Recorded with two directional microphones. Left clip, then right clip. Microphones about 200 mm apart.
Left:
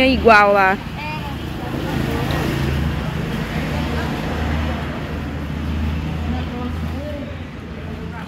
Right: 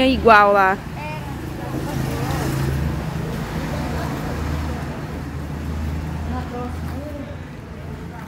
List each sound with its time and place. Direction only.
0.0 s speech: 20° right (ahead or behind)